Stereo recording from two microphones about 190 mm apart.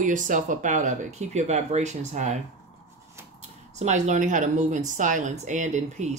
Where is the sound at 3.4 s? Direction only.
35° right (ahead or behind).